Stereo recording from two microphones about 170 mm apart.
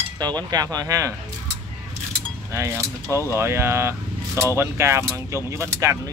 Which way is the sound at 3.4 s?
15° right (ahead or behind).